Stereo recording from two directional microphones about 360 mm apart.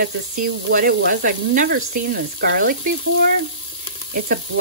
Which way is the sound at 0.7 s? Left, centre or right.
Right.